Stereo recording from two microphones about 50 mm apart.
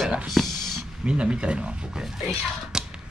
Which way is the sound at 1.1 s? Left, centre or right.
Right.